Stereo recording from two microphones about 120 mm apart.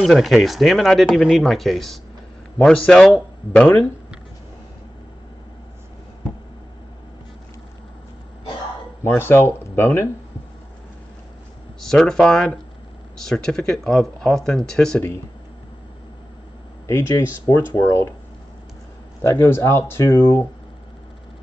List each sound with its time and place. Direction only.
0.0 s speech: centre (ahead or behind)
9.0 s speech: 20° left (ahead or behind)
11.8 s speech: 5° left (ahead or behind)
16.8 s speech: 25° left (ahead or behind)
19.3 s speech: 20° left (ahead or behind)